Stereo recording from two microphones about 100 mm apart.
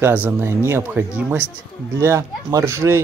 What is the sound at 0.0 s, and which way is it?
Speech, 20° right (ahead or behind).